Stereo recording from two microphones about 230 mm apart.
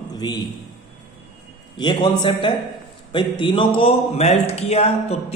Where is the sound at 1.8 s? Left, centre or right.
Left.